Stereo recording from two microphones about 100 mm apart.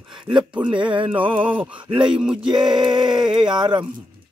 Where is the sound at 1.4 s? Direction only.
15° right (ahead or behind).